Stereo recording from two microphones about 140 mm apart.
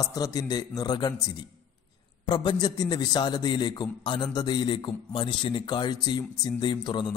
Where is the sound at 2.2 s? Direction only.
30° left (ahead or behind).